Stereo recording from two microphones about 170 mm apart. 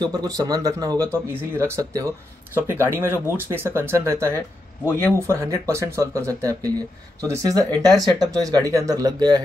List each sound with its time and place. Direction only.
0.0 s speech: 25° right (ahead or behind)
5.3 s speech: 15° right (ahead or behind)